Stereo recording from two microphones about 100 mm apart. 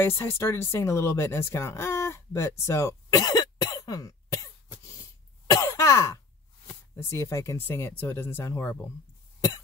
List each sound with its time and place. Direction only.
0.0 s speech: 25° left (ahead or behind)
5.5 s throat clearing: 35° left (ahead or behind)
6.7 s speech: 25° left (ahead or behind)